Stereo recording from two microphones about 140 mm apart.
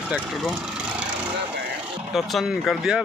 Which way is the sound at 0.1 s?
Centre (ahead or behind).